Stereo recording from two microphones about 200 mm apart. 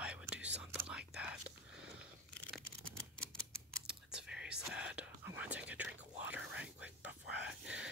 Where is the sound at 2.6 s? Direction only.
90° right.